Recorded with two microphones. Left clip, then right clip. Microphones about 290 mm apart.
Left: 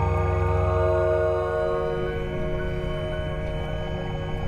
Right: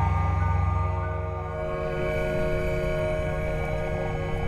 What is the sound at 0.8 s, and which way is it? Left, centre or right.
Music, centre.